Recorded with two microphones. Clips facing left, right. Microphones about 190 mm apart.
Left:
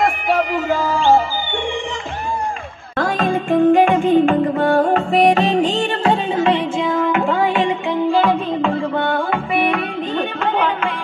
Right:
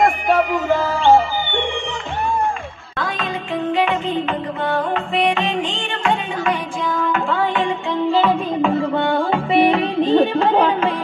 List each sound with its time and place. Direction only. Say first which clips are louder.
3.0 s music: left 6 dB; 50° left (ahead or behind)
6.3 s music: left 5 dB; 25° left (ahead or behind); by 8.4 s 10° left (ahead or behind)
8.9 s music: right 1 dB; 25° right (ahead or behind)